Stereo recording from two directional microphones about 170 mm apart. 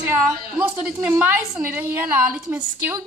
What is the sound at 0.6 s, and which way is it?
A woman's voice, 10° right (ahead or behind).